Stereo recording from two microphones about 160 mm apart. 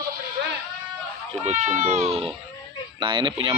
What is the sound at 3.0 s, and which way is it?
Speech, 30° right (ahead or behind).